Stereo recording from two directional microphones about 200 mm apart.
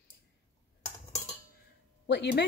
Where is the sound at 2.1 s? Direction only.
60° left (ahead or behind).